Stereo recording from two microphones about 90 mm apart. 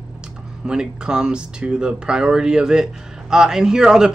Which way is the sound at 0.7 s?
10° right (ahead or behind).